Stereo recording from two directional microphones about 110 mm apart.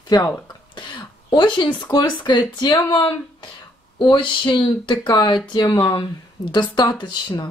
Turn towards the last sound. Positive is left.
turn(degrees=45)  # may be behind; listen again after turning